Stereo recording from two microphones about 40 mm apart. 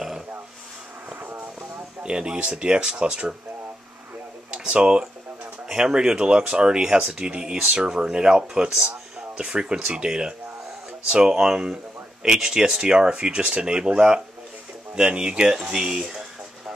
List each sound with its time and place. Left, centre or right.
2.0 s speech: right
4.5 s speech: right
5.7 s speech: centre
7.1 s speech: right